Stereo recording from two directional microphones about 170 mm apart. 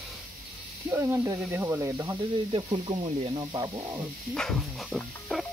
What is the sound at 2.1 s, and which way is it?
Speech, 30° right (ahead or behind).